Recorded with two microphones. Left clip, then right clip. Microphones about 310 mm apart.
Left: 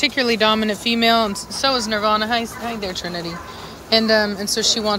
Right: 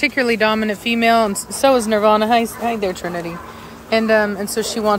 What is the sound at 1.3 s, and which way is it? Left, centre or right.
Speech, right.